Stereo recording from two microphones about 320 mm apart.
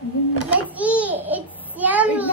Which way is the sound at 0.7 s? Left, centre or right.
Centre.